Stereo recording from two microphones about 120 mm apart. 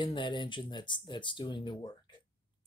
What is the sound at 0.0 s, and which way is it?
Speech, 40° left (ahead or behind).